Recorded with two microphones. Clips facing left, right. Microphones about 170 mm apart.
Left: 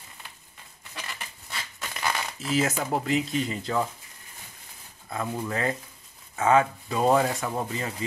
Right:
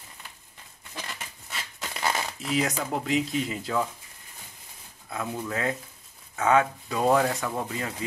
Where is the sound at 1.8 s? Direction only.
25° right (ahead or behind).